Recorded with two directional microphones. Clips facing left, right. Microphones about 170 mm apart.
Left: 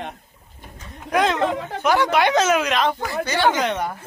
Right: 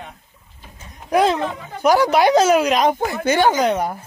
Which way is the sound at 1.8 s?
40° right (ahead or behind).